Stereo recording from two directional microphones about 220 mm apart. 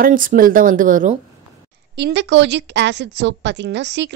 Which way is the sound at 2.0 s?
50° right (ahead or behind).